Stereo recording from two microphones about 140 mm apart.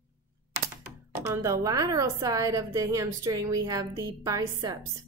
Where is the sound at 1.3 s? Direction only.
20° right (ahead or behind).